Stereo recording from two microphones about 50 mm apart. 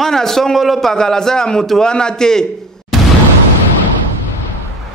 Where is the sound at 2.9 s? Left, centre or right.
Centre.